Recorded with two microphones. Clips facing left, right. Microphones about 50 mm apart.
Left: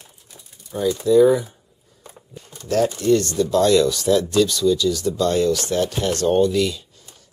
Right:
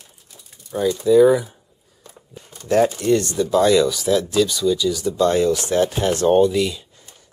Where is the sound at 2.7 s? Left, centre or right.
Right.